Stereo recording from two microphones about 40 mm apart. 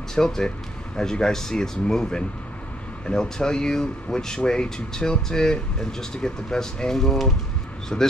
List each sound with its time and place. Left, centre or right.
0.1 s speech: centre
7.9 s speech: left